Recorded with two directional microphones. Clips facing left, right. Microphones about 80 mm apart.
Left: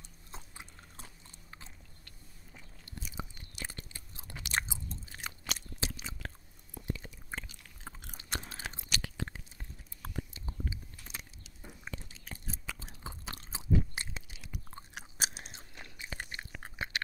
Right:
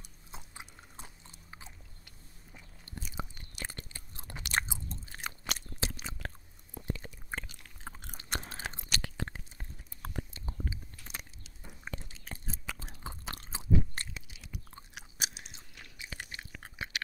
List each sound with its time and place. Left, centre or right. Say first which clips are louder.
0.3 s biting: right 1 dB; centre
3.1 s chewing: right 2 dB; right
8.1 s biting: right 2 dB; right
11.8 s chewing: right 3 dB; right
14.1 s chewing: left 1 dB; left